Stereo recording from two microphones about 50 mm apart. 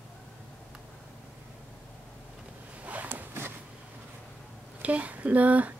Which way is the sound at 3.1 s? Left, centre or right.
Right.